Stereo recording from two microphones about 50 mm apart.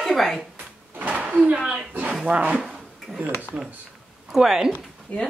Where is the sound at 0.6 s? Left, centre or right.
Right.